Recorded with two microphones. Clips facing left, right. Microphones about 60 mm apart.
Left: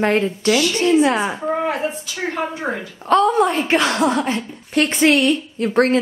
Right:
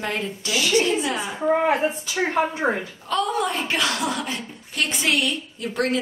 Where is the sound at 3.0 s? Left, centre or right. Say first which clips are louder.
Left 9 dB; left.